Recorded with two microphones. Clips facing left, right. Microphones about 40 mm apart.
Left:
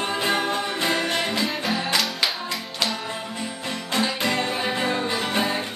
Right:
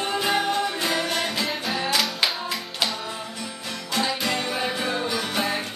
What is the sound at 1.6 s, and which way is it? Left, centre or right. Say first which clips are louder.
Music: left 1 dB; centre.